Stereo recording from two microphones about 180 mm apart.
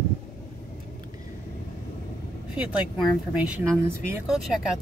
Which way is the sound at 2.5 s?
5° right (ahead or behind).